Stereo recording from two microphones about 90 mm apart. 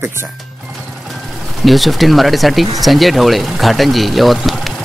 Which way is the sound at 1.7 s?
Centre (ahead or behind).